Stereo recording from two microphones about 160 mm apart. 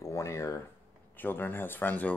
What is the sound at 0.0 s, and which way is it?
Speech, 20° left (ahead or behind).